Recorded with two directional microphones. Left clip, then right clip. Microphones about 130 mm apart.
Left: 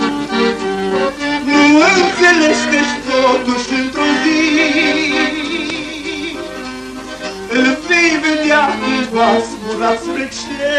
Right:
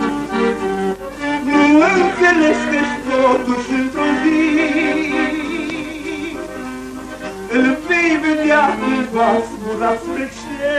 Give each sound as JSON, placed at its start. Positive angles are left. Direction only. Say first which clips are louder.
{"t": 0.0, "sound": "music", "louder": "left 3 dB", "side_deg": 35}
{"t": 7.5, "sound": "music", "louder": "left 3 dB", "side_deg": 35}